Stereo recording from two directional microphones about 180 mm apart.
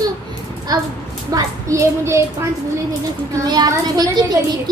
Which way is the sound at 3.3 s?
20° right (ahead or behind).